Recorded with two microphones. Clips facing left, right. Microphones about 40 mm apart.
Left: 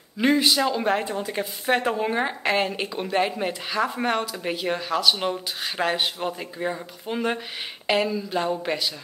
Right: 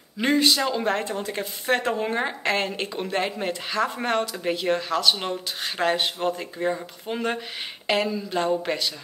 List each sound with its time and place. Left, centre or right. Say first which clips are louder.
0.2 s speech: left 1 dB; centre